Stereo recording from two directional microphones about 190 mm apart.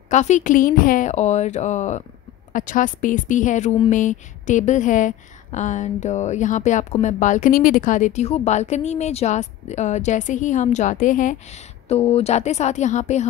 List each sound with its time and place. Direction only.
0.1 s a woman's voice: 40° left (ahead or behind)